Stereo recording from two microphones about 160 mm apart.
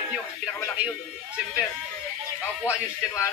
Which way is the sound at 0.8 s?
10° right (ahead or behind).